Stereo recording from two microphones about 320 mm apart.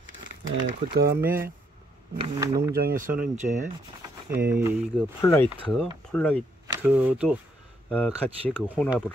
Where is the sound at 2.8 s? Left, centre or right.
Right.